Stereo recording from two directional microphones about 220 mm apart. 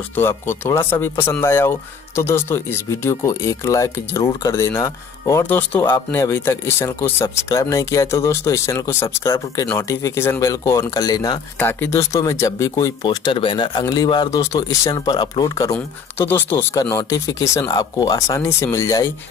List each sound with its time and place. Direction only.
0.1 s speech: 10° left (ahead or behind)